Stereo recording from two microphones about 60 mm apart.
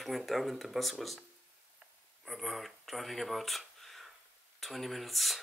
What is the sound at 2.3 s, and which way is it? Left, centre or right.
Speech, centre.